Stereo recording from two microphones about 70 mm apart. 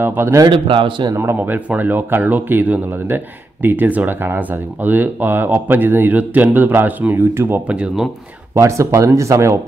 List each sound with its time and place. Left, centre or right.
0.0 s speech: right
7.6 s speech: centre
8.5 s speech: right